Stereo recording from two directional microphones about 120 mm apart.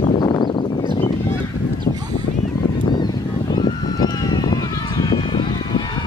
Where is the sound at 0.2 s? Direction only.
40° left (ahead or behind).